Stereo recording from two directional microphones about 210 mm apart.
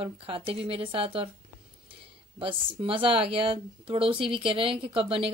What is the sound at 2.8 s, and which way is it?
A woman's voice, 25° right (ahead or behind).